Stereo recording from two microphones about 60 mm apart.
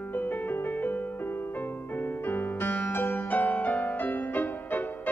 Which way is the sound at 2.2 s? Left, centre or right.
Left.